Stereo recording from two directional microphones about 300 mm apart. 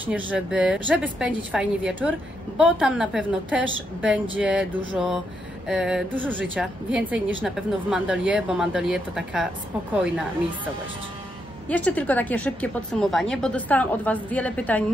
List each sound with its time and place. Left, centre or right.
0.0 s speech: centre
11.7 s speech: centre